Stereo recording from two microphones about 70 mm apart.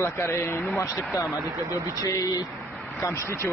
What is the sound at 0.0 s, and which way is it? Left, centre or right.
Speech, left.